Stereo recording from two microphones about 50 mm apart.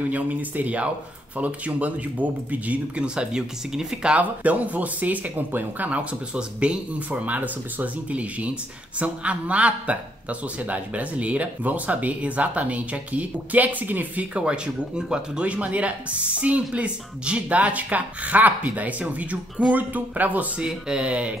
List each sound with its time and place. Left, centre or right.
0.1 s speech: right
3.2 s speech: centre
4.1 s speech: right
6.3 s speech: right
7.1 s speech: right
14.3 s speech: centre
20.6 s speech: centre